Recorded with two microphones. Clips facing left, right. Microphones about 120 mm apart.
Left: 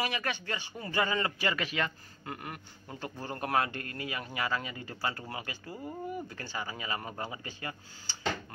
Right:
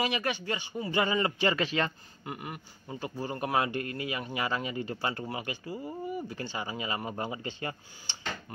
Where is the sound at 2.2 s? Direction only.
5° right (ahead or behind).